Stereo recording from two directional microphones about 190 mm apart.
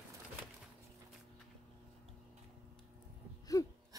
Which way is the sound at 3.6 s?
15° left (ahead or behind).